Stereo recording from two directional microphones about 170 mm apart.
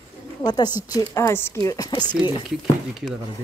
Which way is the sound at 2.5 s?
Centre (ahead or behind).